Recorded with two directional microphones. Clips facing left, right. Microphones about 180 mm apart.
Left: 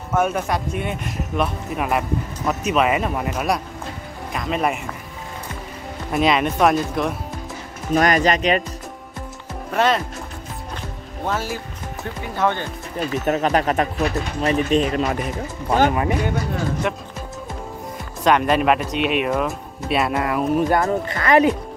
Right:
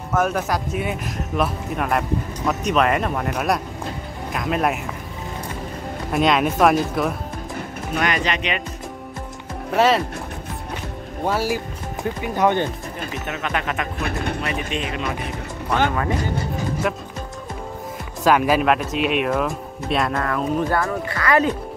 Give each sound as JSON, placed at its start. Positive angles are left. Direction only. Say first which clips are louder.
{"t": 0.1, "sound": "speech", "louder": "left 1 dB", "side_deg": 0}
{"t": 6.1, "sound": "speech", "louder": "even", "side_deg": 0}
{"t": 7.9, "sound": "speech", "louder": "left 6 dB", "side_deg": 40}
{"t": 9.8, "sound": "speech", "louder": "right 2 dB", "side_deg": -5}
{"t": 11.2, "sound": "speech", "louder": "right 3 dB", "side_deg": -10}
{"t": 13.2, "sound": "speech", "louder": "left 8 dB", "side_deg": 40}
{"t": 14.0, "sound": "speech", "louder": "left 2 dB", "side_deg": -60}
{"t": 14.4, "sound": "speech", "louder": "left 8 dB", "side_deg": 35}
{"t": 16.8, "sound": "speech", "louder": "even", "side_deg": 0}
{"t": 18.2, "sound": "speech", "louder": "even", "side_deg": -5}
{"t": 20.8, "sound": "speech", "louder": "left 2 dB", "side_deg": 20}